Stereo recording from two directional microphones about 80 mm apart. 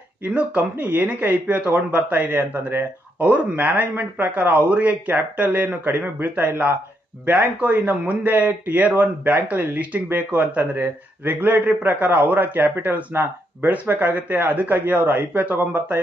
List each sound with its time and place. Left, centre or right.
0.3 s speech: centre